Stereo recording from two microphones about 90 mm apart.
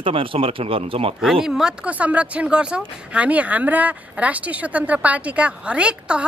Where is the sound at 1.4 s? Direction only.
5° right (ahead or behind).